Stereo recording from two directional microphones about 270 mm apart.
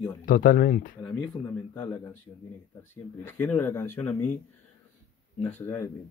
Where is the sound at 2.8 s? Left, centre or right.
Centre.